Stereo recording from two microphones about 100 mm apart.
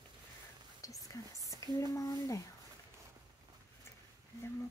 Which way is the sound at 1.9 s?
35° left (ahead or behind).